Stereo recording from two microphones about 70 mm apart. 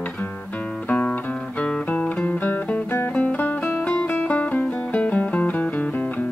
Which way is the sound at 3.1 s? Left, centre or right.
Centre.